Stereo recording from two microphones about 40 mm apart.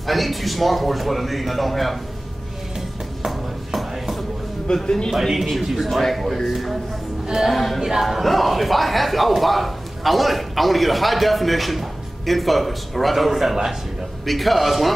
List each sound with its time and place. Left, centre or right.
0.0 s speech: centre
3.3 s a sound: centre
4.8 s a man's voice: centre
5.1 s speech: centre
7.2 s music: centre
7.5 s speech: centre